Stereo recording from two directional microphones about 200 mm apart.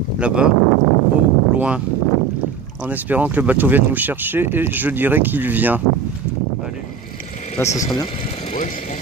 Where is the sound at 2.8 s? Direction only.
10° right (ahead or behind).